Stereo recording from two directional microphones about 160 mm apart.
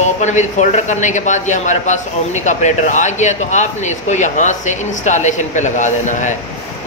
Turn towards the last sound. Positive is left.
turn(degrees=50)  # may be behind; listen again after turning